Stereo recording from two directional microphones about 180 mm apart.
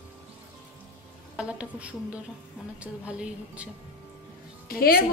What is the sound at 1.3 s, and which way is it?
A woman's voice, 5° right (ahead or behind).